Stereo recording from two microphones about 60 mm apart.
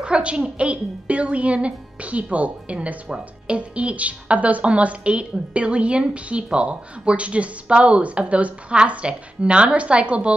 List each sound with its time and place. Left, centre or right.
0.0 s a woman's voice: centre